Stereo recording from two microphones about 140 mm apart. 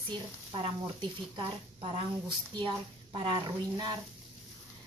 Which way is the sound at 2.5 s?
30° right (ahead or behind).